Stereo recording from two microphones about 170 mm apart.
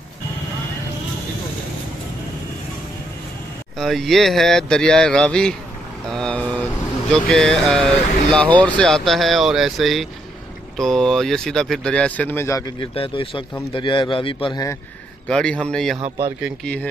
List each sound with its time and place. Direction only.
3.7 s speech: centre (ahead or behind)
6.0 s vehicle: 5° left (ahead or behind)
7.1 s speech: 5° left (ahead or behind)
12.9 s a man's voice: 30° left (ahead or behind)
15.2 s speech: 5° left (ahead or behind)